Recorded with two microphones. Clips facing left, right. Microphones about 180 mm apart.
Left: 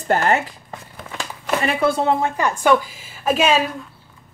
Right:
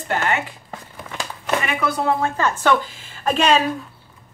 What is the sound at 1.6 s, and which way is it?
A woman's voice, 25° left (ahead or behind).